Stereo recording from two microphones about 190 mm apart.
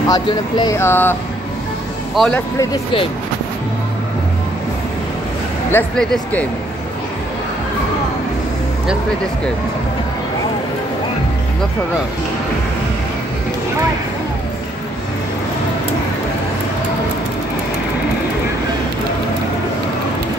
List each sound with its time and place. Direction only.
0.1 s speech: 20° left (ahead or behind)
2.1 s speech: 5° left (ahead or behind)
2.6 s speech: 25° left (ahead or behind)
5.7 s speech: 5° left (ahead or behind)